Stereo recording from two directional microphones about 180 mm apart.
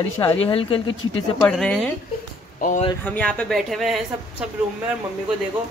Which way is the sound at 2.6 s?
45° left (ahead or behind).